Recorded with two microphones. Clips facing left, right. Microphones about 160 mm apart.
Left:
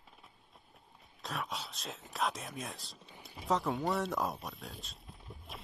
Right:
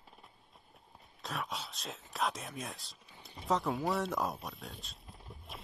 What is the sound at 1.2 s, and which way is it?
Speech, centre (ahead or behind).